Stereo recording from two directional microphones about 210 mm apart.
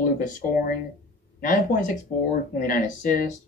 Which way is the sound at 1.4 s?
40° left (ahead or behind).